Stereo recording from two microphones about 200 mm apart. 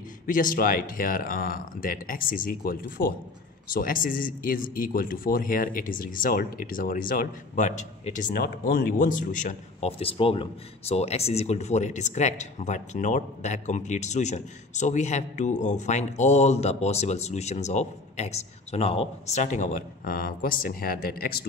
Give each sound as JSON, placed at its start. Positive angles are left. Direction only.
{"t": 0.3, "sound": "a man's voice", "side_deg": 45}